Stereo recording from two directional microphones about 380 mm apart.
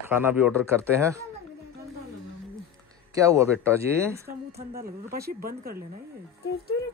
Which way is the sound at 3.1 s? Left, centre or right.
Centre.